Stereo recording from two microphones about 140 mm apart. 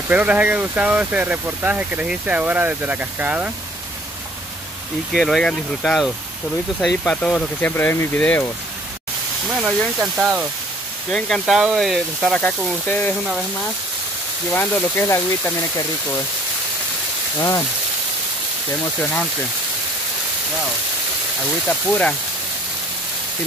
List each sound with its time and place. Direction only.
0.1 s speech: 10° right (ahead or behind)
5.1 s speech: centre (ahead or behind)
9.5 s speech: 5° right (ahead or behind)
14.5 s speech: 15° left (ahead or behind)
17.4 s speech: 20° left (ahead or behind)
18.9 s speech: 10° left (ahead or behind)
21.6 s speech: 10° left (ahead or behind)